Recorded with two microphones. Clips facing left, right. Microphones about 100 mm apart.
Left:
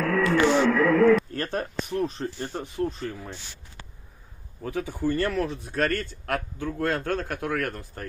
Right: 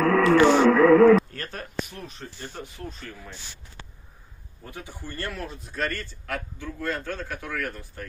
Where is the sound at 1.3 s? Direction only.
35° left (ahead or behind).